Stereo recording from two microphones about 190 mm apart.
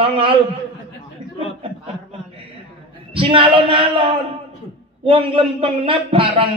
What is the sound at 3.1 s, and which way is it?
A man's voice, 25° right (ahead or behind).